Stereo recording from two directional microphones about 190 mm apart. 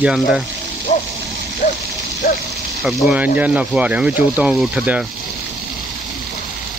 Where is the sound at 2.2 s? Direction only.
50° left (ahead or behind).